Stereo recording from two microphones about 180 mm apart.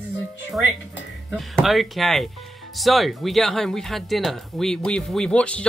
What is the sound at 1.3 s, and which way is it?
Speech, centre (ahead or behind).